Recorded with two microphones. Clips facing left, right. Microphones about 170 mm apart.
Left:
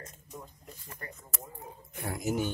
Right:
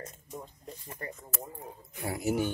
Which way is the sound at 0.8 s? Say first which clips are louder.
Right 5 dB; 25° right (ahead or behind).